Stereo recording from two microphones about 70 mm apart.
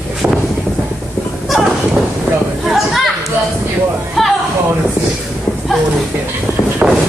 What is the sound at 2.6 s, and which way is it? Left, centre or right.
Chatter, centre.